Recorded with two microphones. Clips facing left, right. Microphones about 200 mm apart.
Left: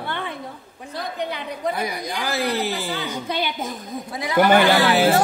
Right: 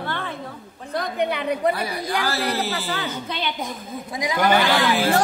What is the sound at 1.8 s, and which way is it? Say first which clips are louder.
A woman's voice: right 2 dB; 15° left (ahead or behind).